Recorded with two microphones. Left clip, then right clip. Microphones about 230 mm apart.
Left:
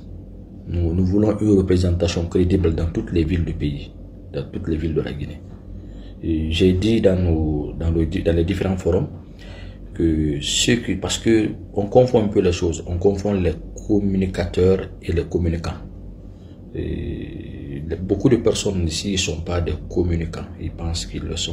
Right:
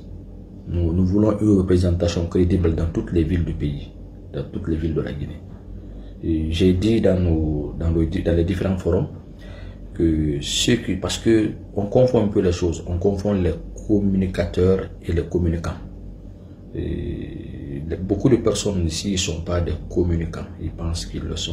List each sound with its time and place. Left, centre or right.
1.1 s speech: centre
6.2 s speech: centre
9.9 s speech: centre
16.7 s a sound: centre
17.8 s speech: centre